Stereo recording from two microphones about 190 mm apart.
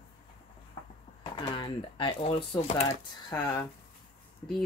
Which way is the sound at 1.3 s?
25° left (ahead or behind).